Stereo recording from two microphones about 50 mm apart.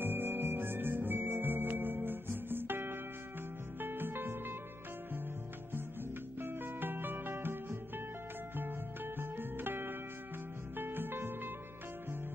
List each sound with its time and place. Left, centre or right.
0.0 s music: right
6.4 s music: right
8.5 s music: right